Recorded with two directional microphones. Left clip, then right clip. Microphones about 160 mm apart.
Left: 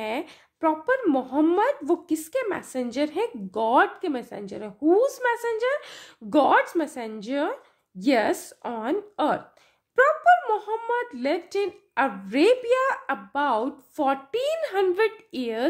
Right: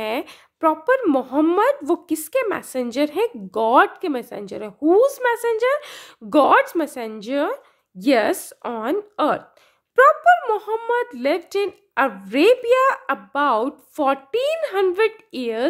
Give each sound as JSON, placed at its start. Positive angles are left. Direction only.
{"t": 0.0, "sound": "a woman's voice", "side_deg": -30}